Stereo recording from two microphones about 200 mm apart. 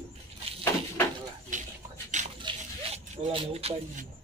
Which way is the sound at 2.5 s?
25° right (ahead or behind).